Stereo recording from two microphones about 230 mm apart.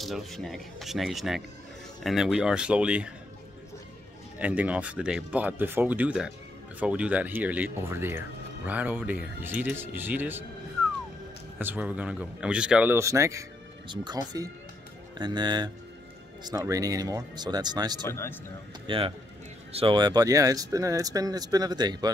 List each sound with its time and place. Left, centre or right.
0.0 s speech: centre
4.4 s speech: centre
11.5 s speech: centre
18.0 s speech: centre
18.9 s speech: right